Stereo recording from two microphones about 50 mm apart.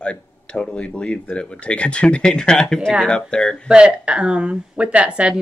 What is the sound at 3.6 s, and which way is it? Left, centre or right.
Speech, centre.